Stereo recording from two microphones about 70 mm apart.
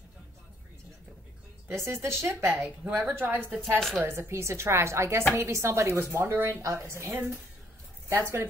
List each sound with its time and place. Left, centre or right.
1.7 s a woman's voice: right